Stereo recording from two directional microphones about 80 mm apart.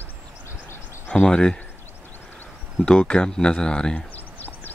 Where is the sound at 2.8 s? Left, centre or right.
Centre.